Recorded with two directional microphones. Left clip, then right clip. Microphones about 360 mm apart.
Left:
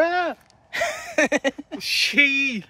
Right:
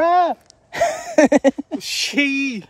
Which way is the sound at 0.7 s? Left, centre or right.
Right.